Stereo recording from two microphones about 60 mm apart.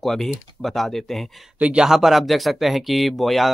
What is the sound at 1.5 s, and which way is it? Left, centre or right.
Speech, right.